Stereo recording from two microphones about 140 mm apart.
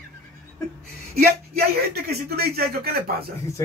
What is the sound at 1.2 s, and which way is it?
Speech, 90° right.